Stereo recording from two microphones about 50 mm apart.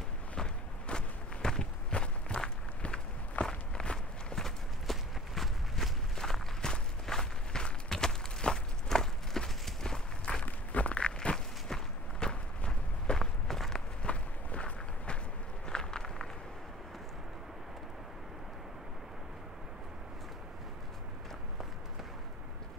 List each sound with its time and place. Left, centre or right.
0.4 s walk: centre
10.4 s walk: left; by 13.8 s centre
14.0 s walk: left